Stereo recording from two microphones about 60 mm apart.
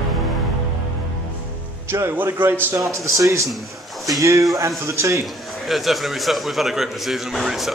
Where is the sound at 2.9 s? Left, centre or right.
Right.